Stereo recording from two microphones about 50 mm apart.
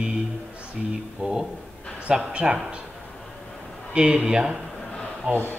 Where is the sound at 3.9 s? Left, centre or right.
Centre.